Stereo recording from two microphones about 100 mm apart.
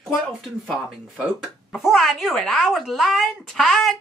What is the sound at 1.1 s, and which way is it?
Speech, centre (ahead or behind).